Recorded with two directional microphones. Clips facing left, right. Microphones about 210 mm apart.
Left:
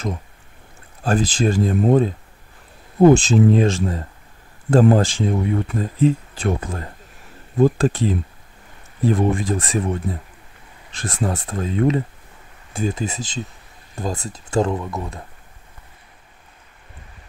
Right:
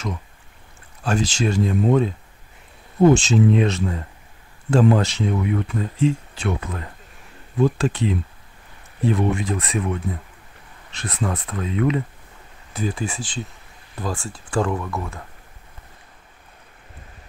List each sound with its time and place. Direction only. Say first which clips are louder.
1.0 s speech: left 3 dB; 40° left (ahead or behind)
5.3 s speech: left 2 dB; 30° left (ahead or behind)
7.5 s speech: left 3 dB; 50° left (ahead or behind)
9.8 s speech: even; 30° left (ahead or behind)
11.0 s speech: left 2 dB; 45° left (ahead or behind)
11.4 s speech: left 3 dB; 30° left (ahead or behind)
13.0 s speech: left 2 dB; 40° left (ahead or behind)
14.5 s speech: left 2 dB; 20° left (ahead or behind)